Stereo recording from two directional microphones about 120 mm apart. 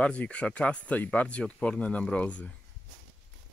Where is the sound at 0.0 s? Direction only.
10° left (ahead or behind).